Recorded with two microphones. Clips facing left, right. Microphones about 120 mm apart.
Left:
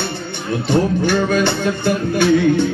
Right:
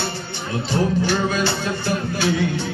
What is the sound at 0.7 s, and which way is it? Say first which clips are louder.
Music: left 4 dB; 55° left (ahead or behind).